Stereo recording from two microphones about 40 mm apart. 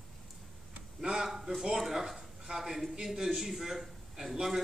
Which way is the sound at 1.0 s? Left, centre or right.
Centre.